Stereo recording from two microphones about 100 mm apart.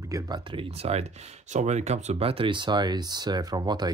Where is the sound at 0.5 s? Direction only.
75° right (ahead or behind).